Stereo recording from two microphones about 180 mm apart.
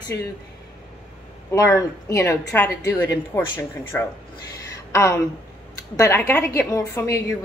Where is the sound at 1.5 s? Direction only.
20° left (ahead or behind).